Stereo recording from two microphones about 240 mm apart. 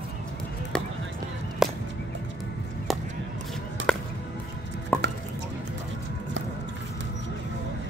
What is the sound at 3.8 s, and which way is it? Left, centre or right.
Music, right.